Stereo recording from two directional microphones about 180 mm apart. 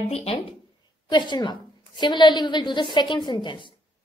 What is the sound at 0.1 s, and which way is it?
A woman's voice, 35° left (ahead or behind).